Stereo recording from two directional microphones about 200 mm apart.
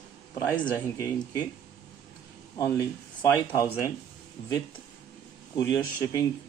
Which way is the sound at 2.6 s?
15° left (ahead or behind).